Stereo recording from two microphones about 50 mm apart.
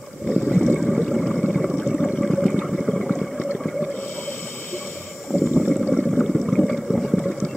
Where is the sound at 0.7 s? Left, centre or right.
Centre.